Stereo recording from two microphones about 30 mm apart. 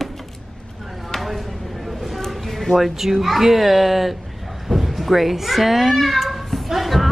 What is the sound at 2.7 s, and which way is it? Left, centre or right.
Speech, centre.